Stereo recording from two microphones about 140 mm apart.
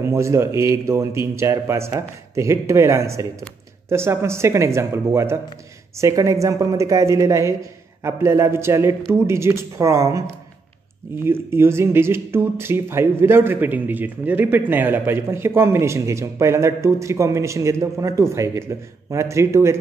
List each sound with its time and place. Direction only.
0.1 s a man's voice: 20° right (ahead or behind)